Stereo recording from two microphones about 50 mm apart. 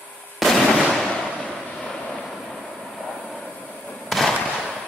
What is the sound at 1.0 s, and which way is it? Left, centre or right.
Vehicle, centre.